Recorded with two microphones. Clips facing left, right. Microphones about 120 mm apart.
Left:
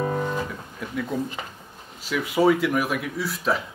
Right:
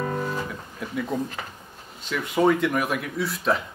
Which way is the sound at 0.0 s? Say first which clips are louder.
Left 2 dB; 25° left (ahead or behind).